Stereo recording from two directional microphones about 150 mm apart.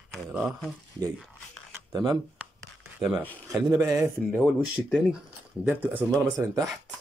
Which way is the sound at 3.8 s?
5° right (ahead or behind).